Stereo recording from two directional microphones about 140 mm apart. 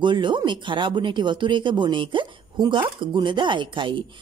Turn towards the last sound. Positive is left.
turn(degrees=-35)  # may be behind; listen again after turning